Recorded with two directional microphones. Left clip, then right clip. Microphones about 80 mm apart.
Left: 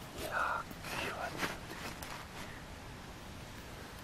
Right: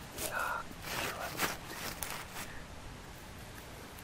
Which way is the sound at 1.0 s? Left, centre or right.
Right.